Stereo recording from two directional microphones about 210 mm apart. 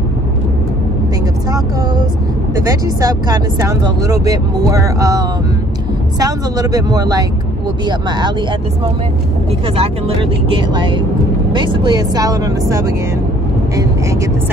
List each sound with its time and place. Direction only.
2.5 s speech: 15° right (ahead or behind)
9.8 s speech: 25° right (ahead or behind)